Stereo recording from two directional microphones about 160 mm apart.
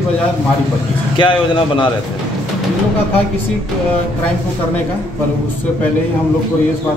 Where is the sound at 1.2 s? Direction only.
30° left (ahead or behind).